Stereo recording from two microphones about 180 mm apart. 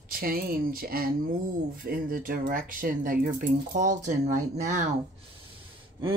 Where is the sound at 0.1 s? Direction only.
55° right (ahead or behind).